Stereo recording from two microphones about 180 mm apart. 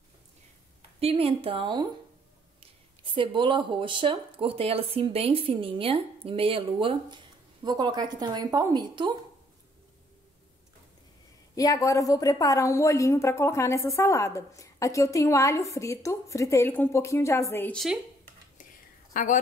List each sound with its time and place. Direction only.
0.9 s a woman's voice: 35° right (ahead or behind)
3.2 s speech: 25° right (ahead or behind)
11.5 s a woman's voice: 20° left (ahead or behind)
19.1 s a woman's voice: 45° left (ahead or behind)